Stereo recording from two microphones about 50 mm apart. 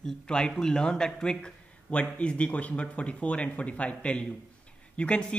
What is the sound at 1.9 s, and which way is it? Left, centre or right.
Speech, left.